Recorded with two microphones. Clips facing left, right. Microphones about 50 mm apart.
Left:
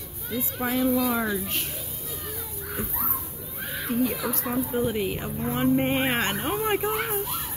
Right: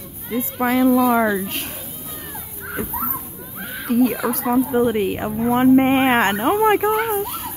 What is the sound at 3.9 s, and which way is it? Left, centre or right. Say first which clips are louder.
Speech: right 9 dB; right.